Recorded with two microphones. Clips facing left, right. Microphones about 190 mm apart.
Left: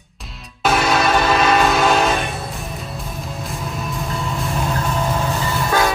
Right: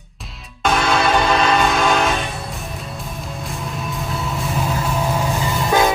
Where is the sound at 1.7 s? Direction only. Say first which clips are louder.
Left 1 dB; 5° left (ahead or behind).